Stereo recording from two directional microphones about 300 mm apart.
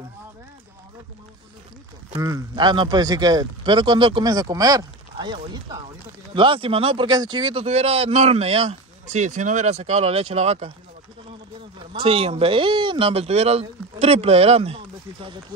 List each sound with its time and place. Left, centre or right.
2.1 s a man's voice: centre
11.9 s a man's voice: centre